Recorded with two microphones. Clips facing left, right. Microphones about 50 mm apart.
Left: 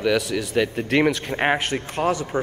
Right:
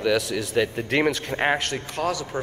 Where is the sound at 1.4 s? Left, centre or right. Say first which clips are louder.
Left 2 dB; centre.